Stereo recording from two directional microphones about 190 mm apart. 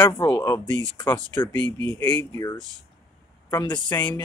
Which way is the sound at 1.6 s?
25° right (ahead or behind).